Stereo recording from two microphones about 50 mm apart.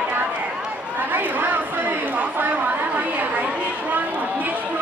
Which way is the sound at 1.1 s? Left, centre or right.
Right.